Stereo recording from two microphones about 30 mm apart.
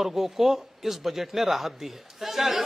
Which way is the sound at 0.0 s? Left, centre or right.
Centre.